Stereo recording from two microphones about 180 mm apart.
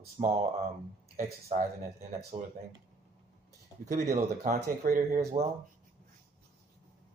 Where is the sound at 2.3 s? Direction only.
20° right (ahead or behind).